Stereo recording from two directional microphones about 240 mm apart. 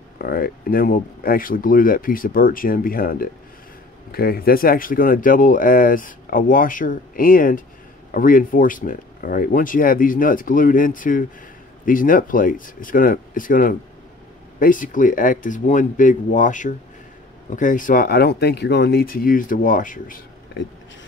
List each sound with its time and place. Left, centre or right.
0.2 s speech: left